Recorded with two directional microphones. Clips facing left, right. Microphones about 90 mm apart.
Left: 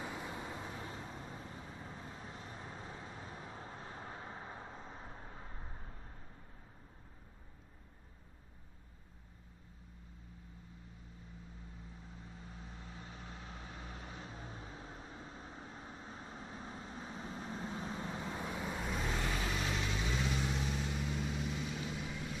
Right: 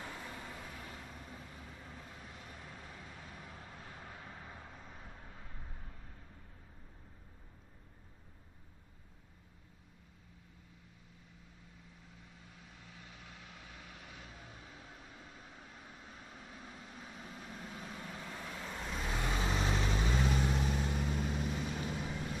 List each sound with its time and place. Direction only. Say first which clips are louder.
0.0 s vehicle: left 3 dB; 15° left (ahead or behind)
12.2 s vehicle: left 5 dB; 30° left (ahead or behind); by 19.1 s 5° left (ahead or behind)
19.3 s vehicle: right 3 dB; 25° right (ahead or behind); by 22.4 s 45° right (ahead or behind)